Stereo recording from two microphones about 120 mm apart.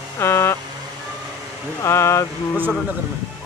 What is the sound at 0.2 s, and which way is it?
Speech, 20° left (ahead or behind).